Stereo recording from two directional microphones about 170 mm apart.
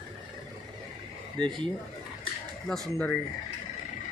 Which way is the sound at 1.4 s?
5° left (ahead or behind).